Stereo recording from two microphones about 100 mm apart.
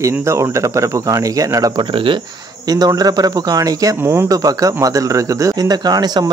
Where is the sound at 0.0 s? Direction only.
30° right (ahead or behind).